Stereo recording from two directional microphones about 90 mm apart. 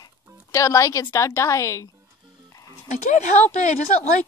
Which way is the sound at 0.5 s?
35° left (ahead or behind).